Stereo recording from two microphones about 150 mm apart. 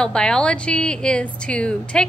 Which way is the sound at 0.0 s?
5° left (ahead or behind).